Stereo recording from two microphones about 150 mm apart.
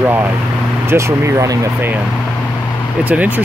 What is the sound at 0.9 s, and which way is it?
Speech, 20° right (ahead or behind).